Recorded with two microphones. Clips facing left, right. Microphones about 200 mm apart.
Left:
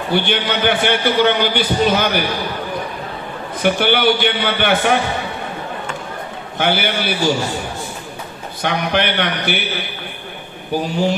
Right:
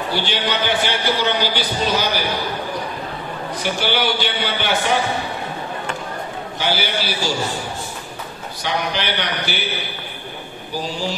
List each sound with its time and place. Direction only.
0.1 s a man's voice: 55° left (ahead or behind)
3.6 s a man's voice: 55° left (ahead or behind)
6.6 s a man's voice: 55° left (ahead or behind)
8.6 s a man's voice: 55° left (ahead or behind)
10.7 s a man's voice: 55° left (ahead or behind)